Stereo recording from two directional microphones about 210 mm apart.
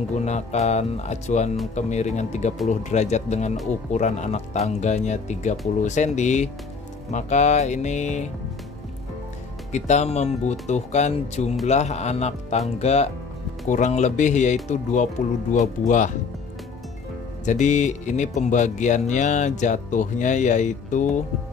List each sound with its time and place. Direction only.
0.1 s speech: 35° left (ahead or behind)
9.7 s speech: 35° left (ahead or behind)
17.5 s speech: 35° left (ahead or behind)